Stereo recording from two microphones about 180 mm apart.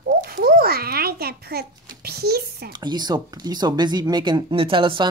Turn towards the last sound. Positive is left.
turn(degrees=-30)  # may be behind; listen again after turning